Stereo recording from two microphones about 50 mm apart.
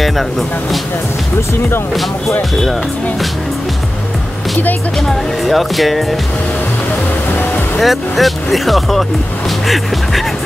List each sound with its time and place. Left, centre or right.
5.0 s speech: centre
7.3 s music: left
7.8 s speech: centre